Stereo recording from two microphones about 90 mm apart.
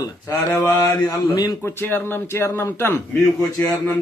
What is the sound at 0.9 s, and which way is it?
Speech, 50° left (ahead or behind).